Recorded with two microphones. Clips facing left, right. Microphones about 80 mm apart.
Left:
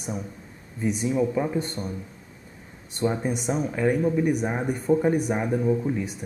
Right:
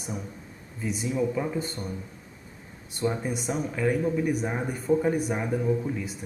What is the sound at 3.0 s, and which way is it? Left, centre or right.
Speech, centre.